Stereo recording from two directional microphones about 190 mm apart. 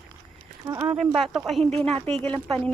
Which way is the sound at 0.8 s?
Centre (ahead or behind).